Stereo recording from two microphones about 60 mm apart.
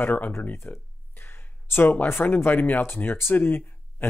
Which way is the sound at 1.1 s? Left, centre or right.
Left.